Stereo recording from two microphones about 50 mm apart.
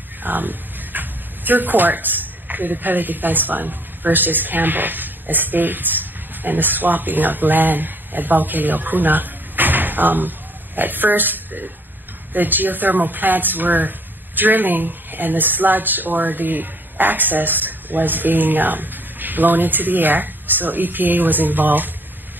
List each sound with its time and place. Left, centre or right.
0.2 s speech: right